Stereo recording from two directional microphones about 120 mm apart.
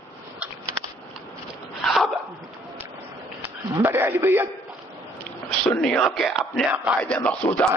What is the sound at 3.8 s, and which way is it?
Speech, 15° right (ahead or behind).